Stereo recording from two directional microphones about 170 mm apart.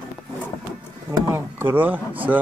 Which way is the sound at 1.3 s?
10° right (ahead or behind).